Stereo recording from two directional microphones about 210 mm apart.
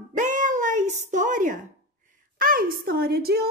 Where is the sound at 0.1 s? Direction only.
35° right (ahead or behind).